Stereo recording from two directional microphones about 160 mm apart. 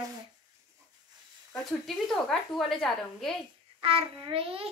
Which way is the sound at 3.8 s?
35° right (ahead or behind).